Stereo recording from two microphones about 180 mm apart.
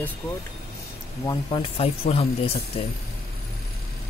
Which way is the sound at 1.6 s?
35° left (ahead or behind).